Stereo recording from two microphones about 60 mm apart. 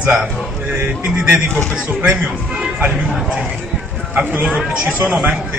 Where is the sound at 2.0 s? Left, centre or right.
Right.